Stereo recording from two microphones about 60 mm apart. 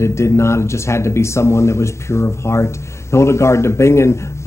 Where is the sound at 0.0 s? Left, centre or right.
Left.